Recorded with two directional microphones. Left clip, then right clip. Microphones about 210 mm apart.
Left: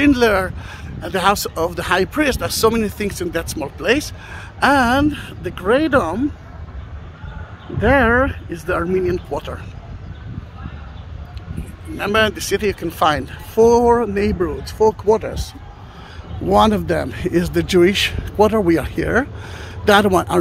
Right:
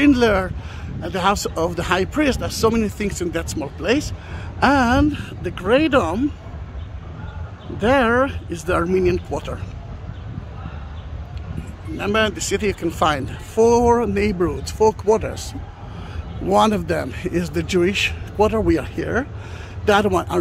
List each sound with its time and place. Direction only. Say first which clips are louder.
0.0 s speech: left 2 dB; 15° left (ahead or behind)
7.8 s speech: left 2 dB; 5° left (ahead or behind)
12.0 s a man's voice: left 3 dB; 15° left (ahead or behind)